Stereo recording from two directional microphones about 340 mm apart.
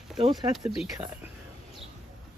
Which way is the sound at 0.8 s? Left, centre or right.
Centre.